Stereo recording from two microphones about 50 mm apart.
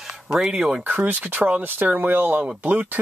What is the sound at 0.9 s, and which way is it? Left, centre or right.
Speech, right.